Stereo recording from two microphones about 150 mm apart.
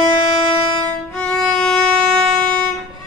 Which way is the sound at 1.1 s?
5° left (ahead or behind).